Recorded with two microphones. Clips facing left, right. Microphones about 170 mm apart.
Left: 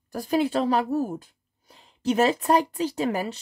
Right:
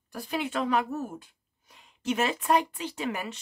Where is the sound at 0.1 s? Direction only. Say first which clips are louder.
Left 8 dB; 40° left (ahead or behind).